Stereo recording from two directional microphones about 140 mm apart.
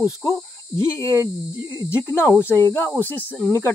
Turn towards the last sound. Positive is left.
turn(degrees=15)  # may be behind; listen again after turning